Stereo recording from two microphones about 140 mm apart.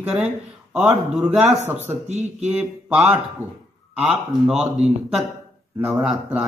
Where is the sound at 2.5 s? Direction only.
5° right (ahead or behind).